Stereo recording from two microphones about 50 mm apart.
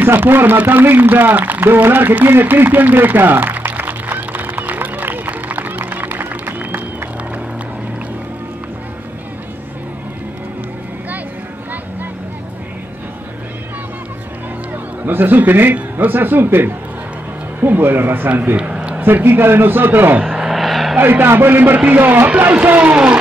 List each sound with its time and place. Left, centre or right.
0.0 s speech: right
0.7 s a sound: right
15.0 s speech: right
18.6 s a sound: right
18.9 s speech: right
20.2 s vehicle: centre
21.0 s speech: right
21.7 s a man's voice: right
22.0 s speech: right